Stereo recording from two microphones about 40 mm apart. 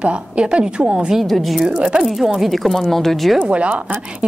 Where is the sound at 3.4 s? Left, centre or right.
Right.